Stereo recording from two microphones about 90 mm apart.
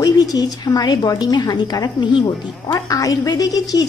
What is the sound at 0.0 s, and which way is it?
A woman's voice, 45° left (ahead or behind).